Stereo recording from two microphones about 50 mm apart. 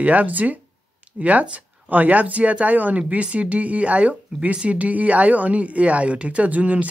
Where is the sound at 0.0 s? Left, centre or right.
Right.